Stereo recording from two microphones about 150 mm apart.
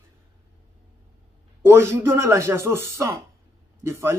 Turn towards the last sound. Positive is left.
turn(degrees=-20)  # may be behind; listen again after turning